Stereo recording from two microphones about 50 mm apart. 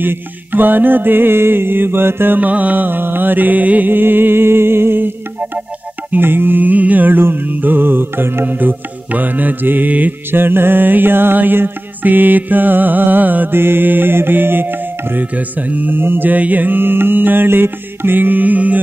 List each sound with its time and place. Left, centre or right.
0.0 s mantra: right
3.9 s music: right
6.1 s mantra: right
8.5 s music: right
10.3 s mantra: right
15.3 s music: right
16.0 s mantra: right
16.3 s mantra: right